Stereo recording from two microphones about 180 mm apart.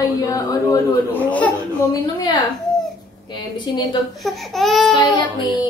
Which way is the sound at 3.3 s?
25° left (ahead or behind).